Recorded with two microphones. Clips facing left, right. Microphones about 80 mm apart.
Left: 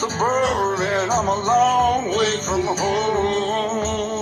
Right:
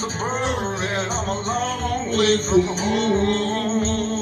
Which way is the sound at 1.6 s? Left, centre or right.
Left.